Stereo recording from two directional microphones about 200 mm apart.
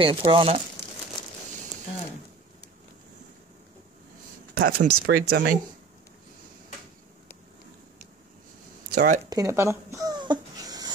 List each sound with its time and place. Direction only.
0.0 s speech: 25° right (ahead or behind)
4.6 s speech: 45° right (ahead or behind)
8.9 s speech: 40° right (ahead or behind)
9.3 s a sound: 15° right (ahead or behind)